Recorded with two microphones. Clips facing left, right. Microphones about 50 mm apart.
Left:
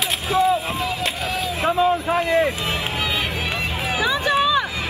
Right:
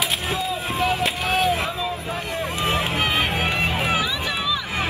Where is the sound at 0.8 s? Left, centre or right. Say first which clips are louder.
Right 2 dB; right.